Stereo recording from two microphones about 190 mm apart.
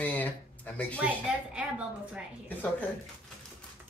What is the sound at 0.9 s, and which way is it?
Speech, 5° right (ahead or behind).